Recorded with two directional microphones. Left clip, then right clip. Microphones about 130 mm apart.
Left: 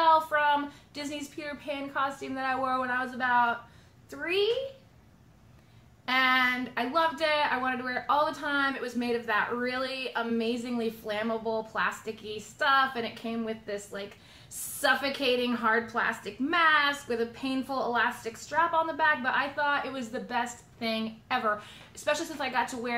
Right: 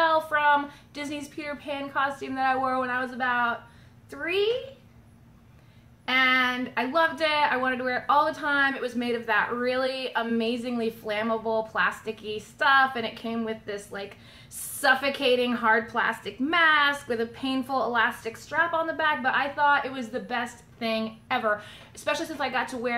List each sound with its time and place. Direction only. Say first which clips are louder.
0.0 s a child's voice: right 1 dB; 20° right (ahead or behind)
6.0 s a woman's voice: right 2 dB; 20° right (ahead or behind)